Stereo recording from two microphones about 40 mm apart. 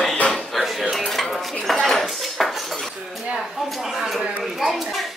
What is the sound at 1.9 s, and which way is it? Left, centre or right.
Cutlery, centre.